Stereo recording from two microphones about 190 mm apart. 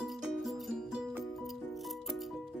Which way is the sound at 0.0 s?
Centre (ahead or behind).